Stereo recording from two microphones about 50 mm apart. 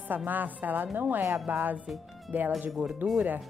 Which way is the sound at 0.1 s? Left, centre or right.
Right.